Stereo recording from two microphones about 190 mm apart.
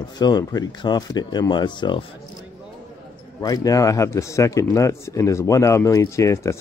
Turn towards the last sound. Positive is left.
turn(degrees=15)  # may be behind; listen again after turning